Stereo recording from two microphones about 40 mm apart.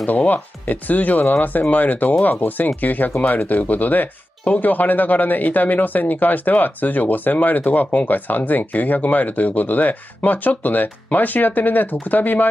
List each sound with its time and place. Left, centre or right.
0.3 s speech: left